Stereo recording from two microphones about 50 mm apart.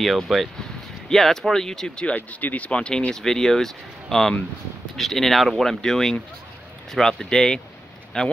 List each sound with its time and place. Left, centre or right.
0.0 s speech: centre
2.0 s speech: left
3.1 s speech: centre